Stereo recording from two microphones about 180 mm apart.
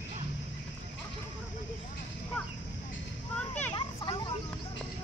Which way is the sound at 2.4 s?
5° left (ahead or behind).